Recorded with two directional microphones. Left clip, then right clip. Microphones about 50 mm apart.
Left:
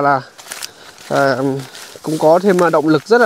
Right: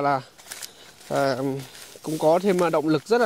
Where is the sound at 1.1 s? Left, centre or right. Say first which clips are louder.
Left 9 dB; right.